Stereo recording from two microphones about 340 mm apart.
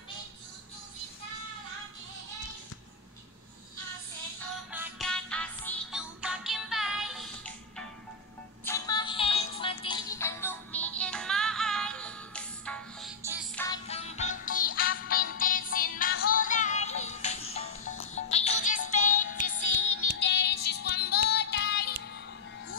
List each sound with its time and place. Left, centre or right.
4.6 s music: centre
13.6 s music: centre
19.5 s music: left